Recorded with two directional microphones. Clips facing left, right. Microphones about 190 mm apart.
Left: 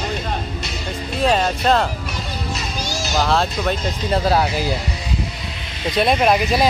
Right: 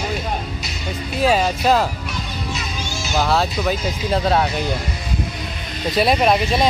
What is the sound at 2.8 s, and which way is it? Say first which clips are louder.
Music: left 3 dB; 40° left (ahead or behind).